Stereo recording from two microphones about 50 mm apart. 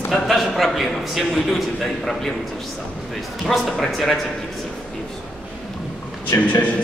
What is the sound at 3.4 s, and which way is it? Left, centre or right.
Speech, centre.